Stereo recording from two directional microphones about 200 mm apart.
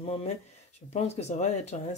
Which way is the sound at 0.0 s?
30° left (ahead or behind).